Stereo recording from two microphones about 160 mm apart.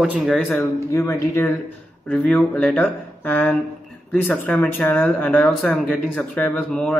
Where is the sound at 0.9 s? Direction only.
15° left (ahead or behind).